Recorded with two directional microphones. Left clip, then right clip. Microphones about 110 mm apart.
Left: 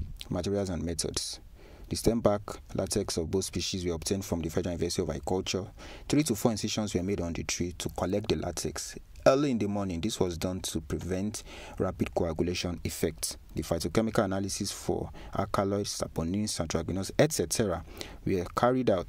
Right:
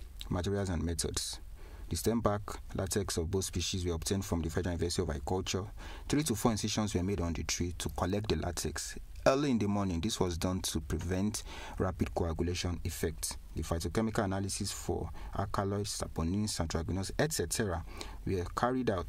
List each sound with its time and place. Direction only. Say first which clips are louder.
0.3 s speech: left 4 dB; 25° left (ahead or behind)
12.3 s speech: left 5 dB; 35° left (ahead or behind)